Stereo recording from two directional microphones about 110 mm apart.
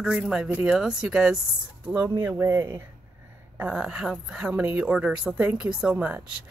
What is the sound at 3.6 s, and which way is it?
Speech, 10° right (ahead or behind).